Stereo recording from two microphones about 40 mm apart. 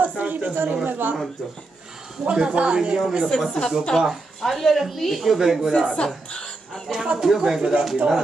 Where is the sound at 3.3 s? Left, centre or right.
Centre.